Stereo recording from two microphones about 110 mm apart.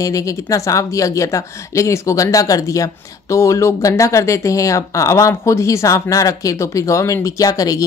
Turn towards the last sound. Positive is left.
turn(degrees=30)  # may be behind; listen again after turning